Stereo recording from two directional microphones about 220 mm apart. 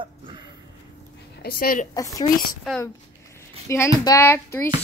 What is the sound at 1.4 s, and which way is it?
Speech, 40° left (ahead or behind).